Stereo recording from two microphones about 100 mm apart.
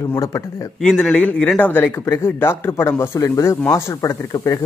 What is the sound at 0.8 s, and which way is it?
A man's voice, 10° left (ahead or behind).